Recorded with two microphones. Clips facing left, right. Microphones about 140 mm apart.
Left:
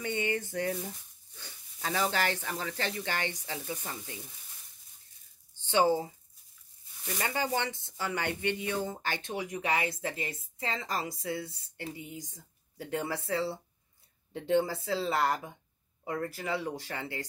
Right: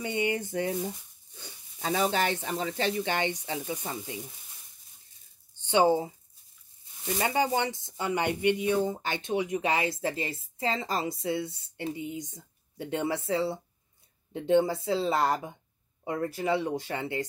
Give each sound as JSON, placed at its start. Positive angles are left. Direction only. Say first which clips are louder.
{"t": 0.0, "sound": "speech", "louder": "right 3 dB", "side_deg": -15}
{"t": 5.6, "sound": "speech", "louder": "right 3 dB", "side_deg": -20}